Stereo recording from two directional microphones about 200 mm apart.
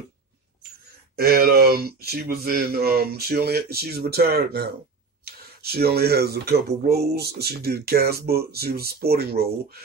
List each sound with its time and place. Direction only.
1.1 s speech: 50° right (ahead or behind)